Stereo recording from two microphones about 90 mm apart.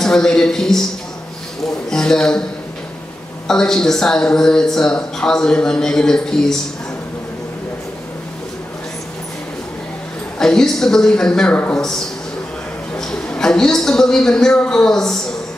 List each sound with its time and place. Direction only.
0.0 s a man's voice: 5° left (ahead or behind)
1.9 s speech: 5° left (ahead or behind)
3.4 s speech: 5° left (ahead or behind)
10.4 s a man's voice: 5° left (ahead or behind)
12.9 s a man's voice: 10° left (ahead or behind)